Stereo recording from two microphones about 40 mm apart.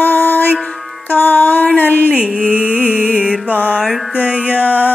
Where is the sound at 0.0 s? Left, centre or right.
Left.